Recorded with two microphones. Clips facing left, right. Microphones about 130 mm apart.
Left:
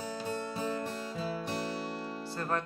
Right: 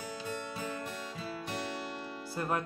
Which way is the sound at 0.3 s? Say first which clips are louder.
Left 4 dB; 35° left (ahead or behind).